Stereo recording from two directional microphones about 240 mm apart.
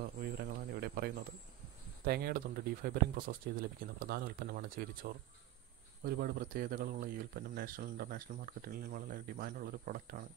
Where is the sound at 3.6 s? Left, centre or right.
Right.